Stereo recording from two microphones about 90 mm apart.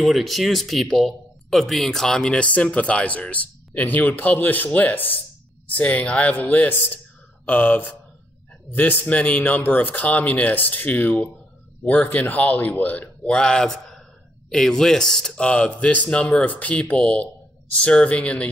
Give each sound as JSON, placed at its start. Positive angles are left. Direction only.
{"t": 0.0, "sound": "speech", "side_deg": 0}
{"t": 9.0, "sound": "speech", "side_deg": 15}